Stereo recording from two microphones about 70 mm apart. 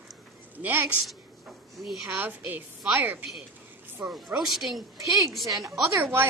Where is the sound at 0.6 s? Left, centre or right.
Right.